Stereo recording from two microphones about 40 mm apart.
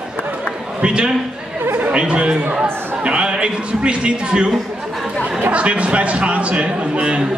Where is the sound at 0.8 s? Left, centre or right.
Right.